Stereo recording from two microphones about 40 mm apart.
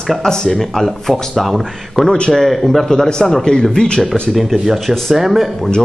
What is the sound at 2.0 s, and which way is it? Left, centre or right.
Speech, left.